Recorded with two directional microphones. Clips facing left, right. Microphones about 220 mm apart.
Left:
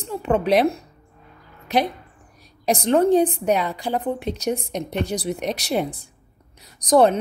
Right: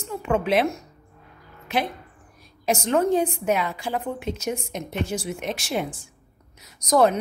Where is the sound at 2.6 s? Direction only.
35° left (ahead or behind).